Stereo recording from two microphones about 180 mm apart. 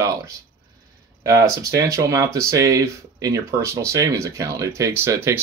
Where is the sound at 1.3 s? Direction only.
15° right (ahead or behind).